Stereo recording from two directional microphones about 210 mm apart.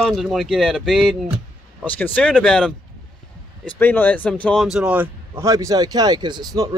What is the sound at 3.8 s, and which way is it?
A man's voice, 10° left (ahead or behind).